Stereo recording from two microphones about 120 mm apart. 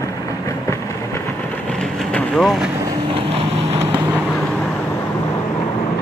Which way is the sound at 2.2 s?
5° left (ahead or behind).